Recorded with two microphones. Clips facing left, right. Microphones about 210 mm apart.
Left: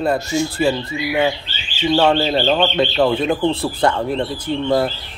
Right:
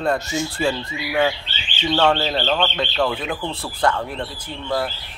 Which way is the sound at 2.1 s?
10° left (ahead or behind).